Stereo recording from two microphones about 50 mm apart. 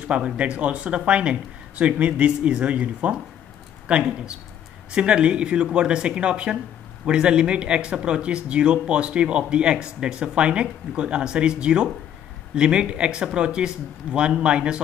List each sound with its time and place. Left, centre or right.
0.1 s speech: right